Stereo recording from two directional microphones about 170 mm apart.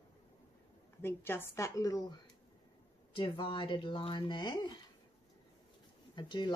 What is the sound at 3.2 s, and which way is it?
Speech, 30° left (ahead or behind).